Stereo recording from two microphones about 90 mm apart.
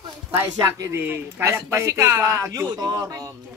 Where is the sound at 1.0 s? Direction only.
25° right (ahead or behind); by 3.3 s 40° right (ahead or behind).